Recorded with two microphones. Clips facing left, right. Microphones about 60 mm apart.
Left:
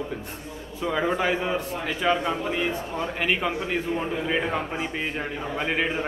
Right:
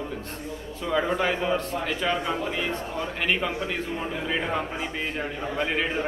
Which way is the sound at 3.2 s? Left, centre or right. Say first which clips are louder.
Even; centre.